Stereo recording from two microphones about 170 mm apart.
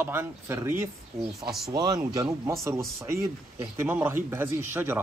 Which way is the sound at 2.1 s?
15° right (ahead or behind).